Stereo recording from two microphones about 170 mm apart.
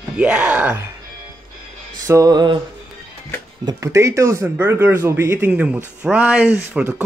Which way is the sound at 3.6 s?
20° right (ahead or behind).